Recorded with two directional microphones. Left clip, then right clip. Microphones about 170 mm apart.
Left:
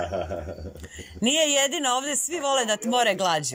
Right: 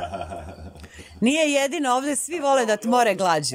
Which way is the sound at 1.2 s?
30° right (ahead or behind).